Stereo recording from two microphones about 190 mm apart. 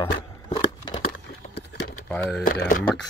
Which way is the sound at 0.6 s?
25° left (ahead or behind).